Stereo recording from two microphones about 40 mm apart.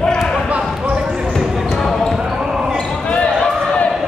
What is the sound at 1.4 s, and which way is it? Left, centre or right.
Basketball bounce, centre.